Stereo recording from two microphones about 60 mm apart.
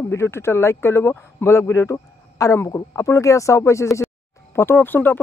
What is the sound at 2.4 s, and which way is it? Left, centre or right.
Speech, left.